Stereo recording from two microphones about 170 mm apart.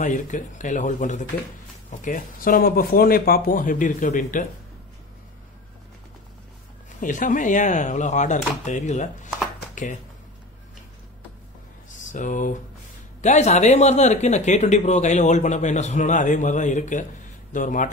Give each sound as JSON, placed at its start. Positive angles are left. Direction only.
{"t": 0.0, "sound": "speech", "side_deg": 50}
{"t": 7.0, "sound": "speech", "side_deg": 50}
{"t": 12.1, "sound": "speech", "side_deg": 50}